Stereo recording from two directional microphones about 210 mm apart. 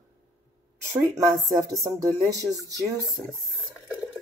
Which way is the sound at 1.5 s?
15° right (ahead or behind).